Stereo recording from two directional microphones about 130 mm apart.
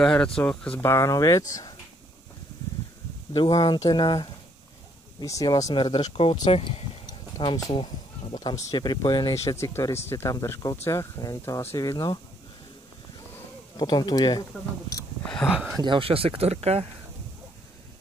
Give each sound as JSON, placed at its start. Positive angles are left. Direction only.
{"t": 0.0, "sound": "speech", "side_deg": 5}
{"t": 0.8, "sound": "speech", "side_deg": 25}
{"t": 3.3, "sound": "speech", "side_deg": 35}
{"t": 5.2, "sound": "speech", "side_deg": 25}
{"t": 5.8, "sound": "speech", "side_deg": 40}
{"t": 7.1, "sound": "a sound", "side_deg": 35}
{"t": 7.7, "sound": "speech", "side_deg": 40}
{"t": 13.7, "sound": "speech", "side_deg": 30}
{"t": 15.2, "sound": "speech", "side_deg": 5}
{"t": 15.5, "sound": "a sound", "side_deg": -5}
{"t": 15.8, "sound": "speech", "side_deg": -40}